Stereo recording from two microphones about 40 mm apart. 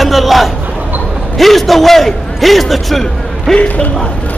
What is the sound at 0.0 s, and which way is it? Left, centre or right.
Hubbub, centre.